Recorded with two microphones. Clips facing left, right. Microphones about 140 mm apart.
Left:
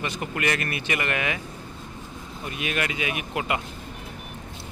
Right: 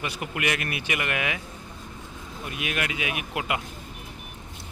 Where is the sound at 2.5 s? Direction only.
5° right (ahead or behind).